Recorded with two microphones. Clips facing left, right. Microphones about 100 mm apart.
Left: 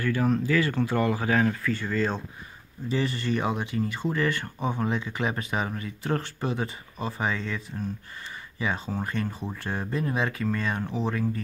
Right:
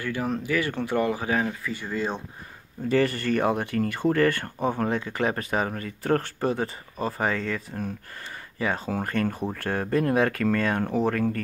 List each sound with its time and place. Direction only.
0.0 s speech: 25° right (ahead or behind)
2.9 s speech: 50° right (ahead or behind)
8.9 s speech: 60° right (ahead or behind)